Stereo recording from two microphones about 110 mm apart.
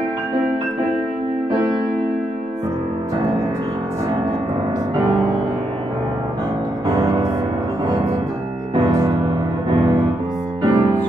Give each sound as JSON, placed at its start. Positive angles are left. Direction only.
{"t": 6.9, "sound": "music", "side_deg": -35}
{"t": 8.7, "sound": "music", "side_deg": -35}
{"t": 10.6, "sound": "music", "side_deg": -40}